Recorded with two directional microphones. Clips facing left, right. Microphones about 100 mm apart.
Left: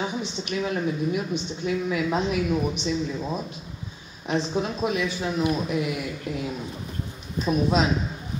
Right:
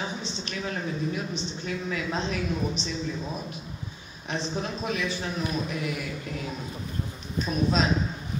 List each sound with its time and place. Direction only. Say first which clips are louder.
0.2 s a woman's voice: left 5 dB; 15° left (ahead or behind)
4.3 s a woman's voice: left 5 dB; 15° left (ahead or behind)
7.4 s a woman's voice: left 4 dB; 15° left (ahead or behind)